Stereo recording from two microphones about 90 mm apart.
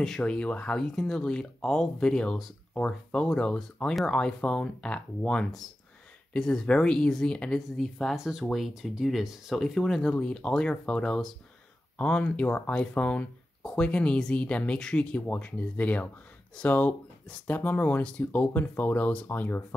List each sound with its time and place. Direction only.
0.0 s speech: 10° left (ahead or behind)